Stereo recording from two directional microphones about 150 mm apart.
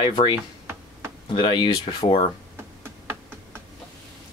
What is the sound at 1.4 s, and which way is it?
Speech, 30° left (ahead or behind).